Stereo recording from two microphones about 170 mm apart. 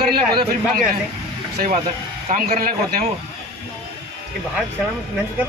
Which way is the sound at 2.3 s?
55° right (ahead or behind).